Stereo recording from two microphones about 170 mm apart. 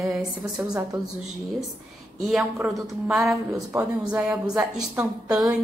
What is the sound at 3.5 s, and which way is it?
Speech, 20° right (ahead or behind).